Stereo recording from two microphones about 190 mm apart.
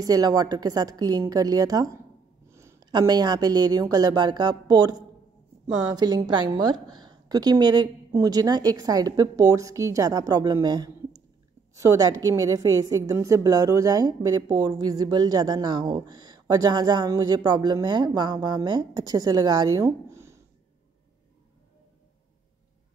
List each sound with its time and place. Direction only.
0.0 s a woman's voice: 20° right (ahead or behind)